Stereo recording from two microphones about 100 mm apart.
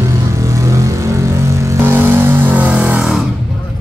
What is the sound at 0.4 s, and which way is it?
Vehicle, 30° right (ahead or behind).